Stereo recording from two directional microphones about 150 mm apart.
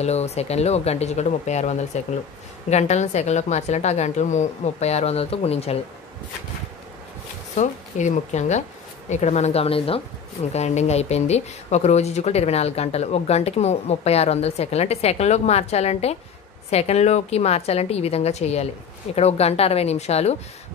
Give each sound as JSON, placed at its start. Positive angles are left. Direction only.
{"t": 0.0, "sound": "speech", "side_deg": 45}
{"t": 7.5, "sound": "speech", "side_deg": 55}